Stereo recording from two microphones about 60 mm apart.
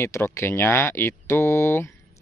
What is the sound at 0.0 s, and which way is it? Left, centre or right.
Speech, left.